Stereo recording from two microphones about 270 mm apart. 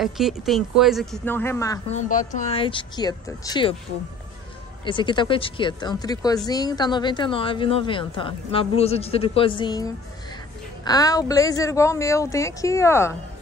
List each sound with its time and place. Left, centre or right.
0.0 s speech: centre
1.9 s speech: left
4.8 s speech: centre